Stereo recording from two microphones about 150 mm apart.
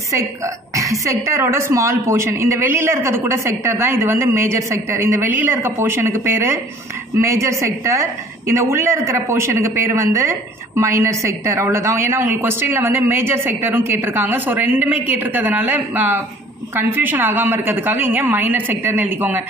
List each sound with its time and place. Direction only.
0.7 s a woman's voice: 20° right (ahead or behind)